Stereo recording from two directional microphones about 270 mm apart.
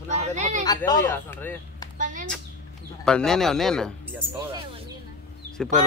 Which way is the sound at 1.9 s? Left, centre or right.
Right.